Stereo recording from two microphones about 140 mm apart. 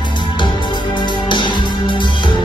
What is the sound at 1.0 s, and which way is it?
Music, 35° left (ahead or behind).